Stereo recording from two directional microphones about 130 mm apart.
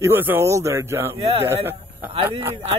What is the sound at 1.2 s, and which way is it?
Speech, 50° right (ahead or behind).